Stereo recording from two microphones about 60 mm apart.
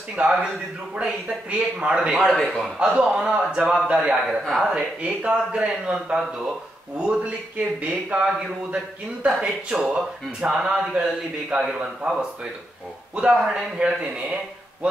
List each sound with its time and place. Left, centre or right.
0.1 s speech: centre
2.0 s a man's voice: centre
13.1 s speech: centre